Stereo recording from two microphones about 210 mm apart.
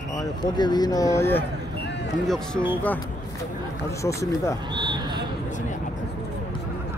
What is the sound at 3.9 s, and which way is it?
Speech, 15° left (ahead or behind).